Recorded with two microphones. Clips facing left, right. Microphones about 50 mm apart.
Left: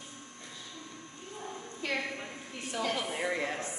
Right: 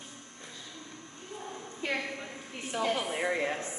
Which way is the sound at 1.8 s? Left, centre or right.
Centre.